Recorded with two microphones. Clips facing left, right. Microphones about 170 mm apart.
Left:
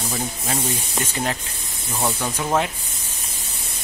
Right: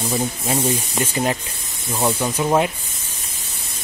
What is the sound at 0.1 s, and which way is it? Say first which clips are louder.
Speech: right 5 dB; 15° right (ahead or behind).